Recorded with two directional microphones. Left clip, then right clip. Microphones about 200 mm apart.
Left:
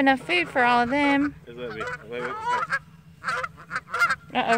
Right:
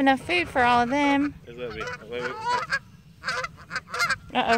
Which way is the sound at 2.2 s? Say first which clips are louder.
Left 1 dB; 25° right (ahead or behind).